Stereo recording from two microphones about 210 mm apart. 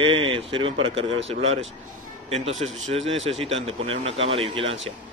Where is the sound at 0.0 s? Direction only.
25° right (ahead or behind).